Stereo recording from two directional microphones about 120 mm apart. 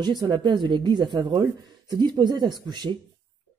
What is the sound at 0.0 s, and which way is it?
Speech, 35° right (ahead or behind).